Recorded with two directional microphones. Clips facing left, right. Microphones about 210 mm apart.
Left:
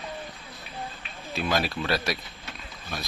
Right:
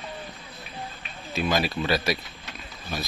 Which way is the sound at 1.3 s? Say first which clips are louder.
Right 2 dB; centre (ahead or behind).